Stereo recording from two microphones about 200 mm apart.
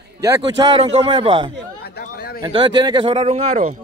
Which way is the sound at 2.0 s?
50° left (ahead or behind).